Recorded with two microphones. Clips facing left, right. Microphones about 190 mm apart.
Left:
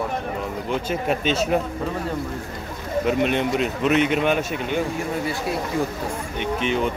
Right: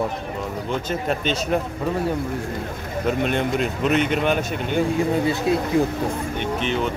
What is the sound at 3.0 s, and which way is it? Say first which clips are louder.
Speech: left 1 dB; centre (ahead or behind).